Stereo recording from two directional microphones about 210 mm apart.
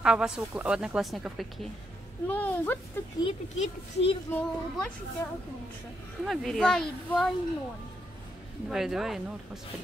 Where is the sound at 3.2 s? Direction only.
30° left (ahead or behind).